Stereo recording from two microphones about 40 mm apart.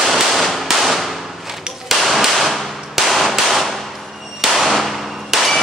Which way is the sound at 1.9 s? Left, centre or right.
Centre.